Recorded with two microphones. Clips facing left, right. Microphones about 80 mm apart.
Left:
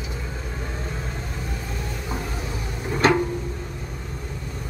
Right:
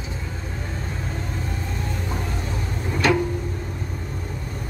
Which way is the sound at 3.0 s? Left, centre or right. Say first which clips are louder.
Left 1 dB; left.